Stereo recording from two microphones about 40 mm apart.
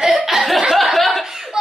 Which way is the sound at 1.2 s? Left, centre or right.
Centre.